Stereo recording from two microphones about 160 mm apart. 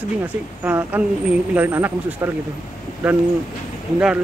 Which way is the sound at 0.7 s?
10° right (ahead or behind).